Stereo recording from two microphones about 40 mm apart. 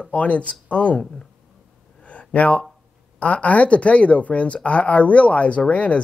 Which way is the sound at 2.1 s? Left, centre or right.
Left.